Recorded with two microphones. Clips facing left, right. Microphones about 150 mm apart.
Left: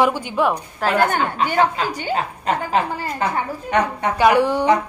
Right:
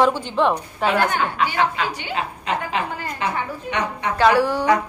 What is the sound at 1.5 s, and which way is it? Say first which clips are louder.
A woman's voice: left 3 dB; 40° left (ahead or behind).